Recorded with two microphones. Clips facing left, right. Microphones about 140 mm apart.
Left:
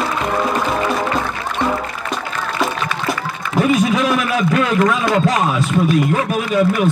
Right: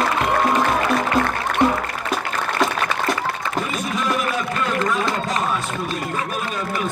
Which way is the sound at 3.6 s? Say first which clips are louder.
Left 13 dB; 90° left.